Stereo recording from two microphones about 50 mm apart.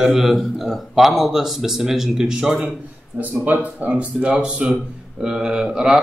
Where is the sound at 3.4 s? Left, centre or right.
Right.